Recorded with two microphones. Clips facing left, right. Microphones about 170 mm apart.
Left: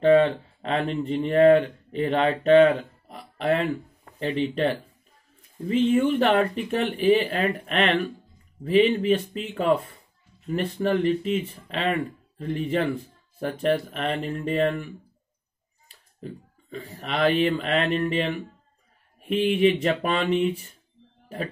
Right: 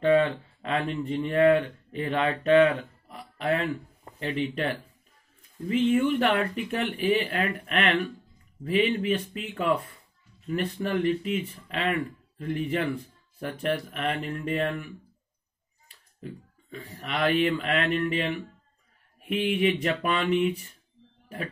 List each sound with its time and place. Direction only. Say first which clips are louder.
0.0 s speech: left 4 dB; 30° left (ahead or behind)
16.7 s speech: left 3 dB; 30° left (ahead or behind)
19.2 s speech: left 4 dB; 30° left (ahead or behind)